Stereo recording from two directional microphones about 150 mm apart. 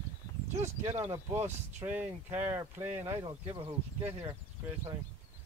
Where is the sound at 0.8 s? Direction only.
20° right (ahead or behind).